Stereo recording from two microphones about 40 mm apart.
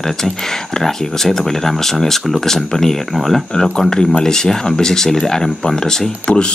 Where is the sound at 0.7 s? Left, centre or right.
Centre.